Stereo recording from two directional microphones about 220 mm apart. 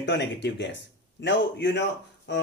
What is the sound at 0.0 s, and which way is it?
A man's voice, 50° left (ahead or behind).